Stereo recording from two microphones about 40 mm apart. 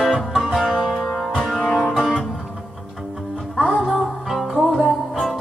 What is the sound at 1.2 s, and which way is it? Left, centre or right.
Music, centre.